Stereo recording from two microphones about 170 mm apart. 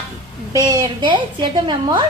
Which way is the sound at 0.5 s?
20° right (ahead or behind).